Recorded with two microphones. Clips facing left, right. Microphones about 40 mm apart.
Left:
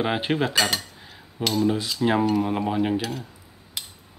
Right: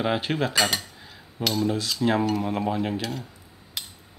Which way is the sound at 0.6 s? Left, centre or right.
Centre.